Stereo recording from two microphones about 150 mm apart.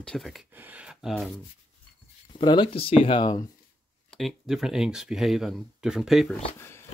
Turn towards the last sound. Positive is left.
turn(degrees=15)  # may be behind; listen again after turning